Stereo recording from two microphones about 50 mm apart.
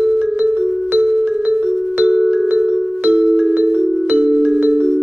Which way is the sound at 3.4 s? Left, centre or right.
Right.